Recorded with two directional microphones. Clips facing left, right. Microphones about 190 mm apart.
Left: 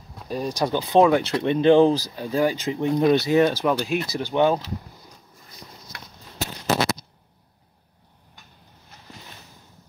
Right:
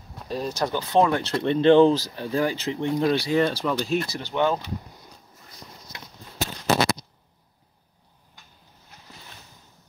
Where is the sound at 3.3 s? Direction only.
10° left (ahead or behind).